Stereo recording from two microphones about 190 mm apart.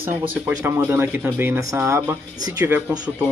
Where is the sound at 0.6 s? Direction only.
15° right (ahead or behind).